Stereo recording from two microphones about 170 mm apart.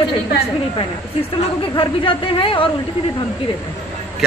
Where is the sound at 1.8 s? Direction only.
30° left (ahead or behind).